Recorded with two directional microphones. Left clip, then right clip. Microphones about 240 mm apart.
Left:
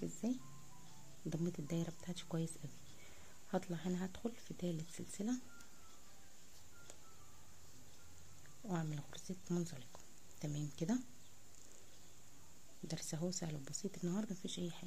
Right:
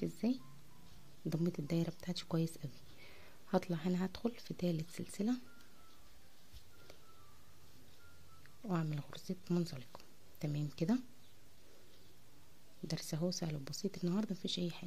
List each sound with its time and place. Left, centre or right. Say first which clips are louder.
0.2 s speech: right 4 dB; right
8.6 s speech: right 4 dB; right
12.8 s speech: right 4 dB; right